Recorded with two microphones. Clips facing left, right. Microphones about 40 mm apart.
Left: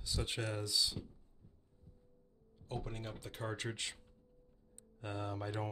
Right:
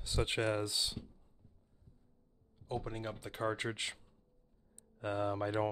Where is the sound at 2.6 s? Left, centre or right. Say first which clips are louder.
Right 4 dB; centre.